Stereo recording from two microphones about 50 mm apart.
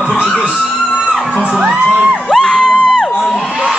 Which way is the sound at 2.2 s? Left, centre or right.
Centre.